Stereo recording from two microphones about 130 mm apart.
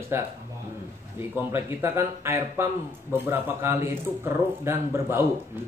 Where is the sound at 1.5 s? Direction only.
20° right (ahead or behind).